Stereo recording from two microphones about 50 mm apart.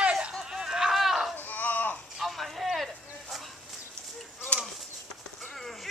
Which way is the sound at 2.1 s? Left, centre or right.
Centre.